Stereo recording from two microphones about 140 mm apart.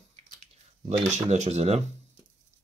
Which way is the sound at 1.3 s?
50° right (ahead or behind).